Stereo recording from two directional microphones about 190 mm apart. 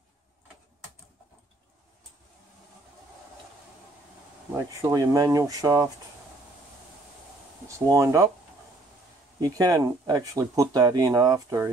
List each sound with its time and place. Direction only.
4.8 s speech: 20° right (ahead or behind)
7.6 s speech: 15° right (ahead or behind)
9.4 s speech: 20° right (ahead or behind)